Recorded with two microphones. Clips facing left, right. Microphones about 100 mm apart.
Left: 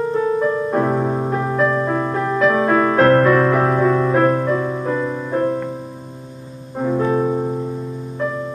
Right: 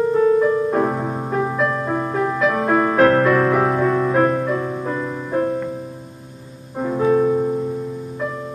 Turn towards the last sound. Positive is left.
turn(degrees=10)  # may be behind; listen again after turning